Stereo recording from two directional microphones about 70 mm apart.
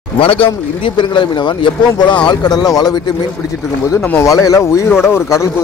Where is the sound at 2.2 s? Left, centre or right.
Left.